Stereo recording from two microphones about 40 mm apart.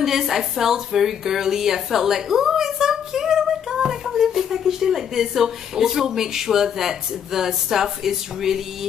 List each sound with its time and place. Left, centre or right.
0.0 s a woman's voice: centre